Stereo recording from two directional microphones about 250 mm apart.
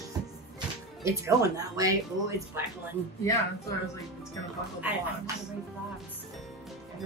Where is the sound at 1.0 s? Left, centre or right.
Centre.